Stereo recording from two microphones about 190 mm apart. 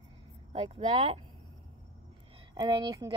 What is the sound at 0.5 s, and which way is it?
Speech, 30° right (ahead or behind).